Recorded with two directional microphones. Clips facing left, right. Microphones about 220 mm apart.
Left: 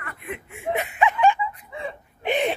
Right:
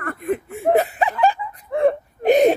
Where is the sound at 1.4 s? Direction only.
60° right (ahead or behind).